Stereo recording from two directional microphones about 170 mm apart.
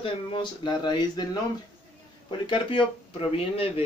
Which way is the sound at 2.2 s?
30° left (ahead or behind).